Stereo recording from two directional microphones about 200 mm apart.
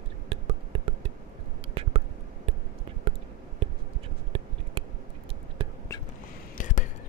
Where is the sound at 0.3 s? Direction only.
30° right (ahead or behind).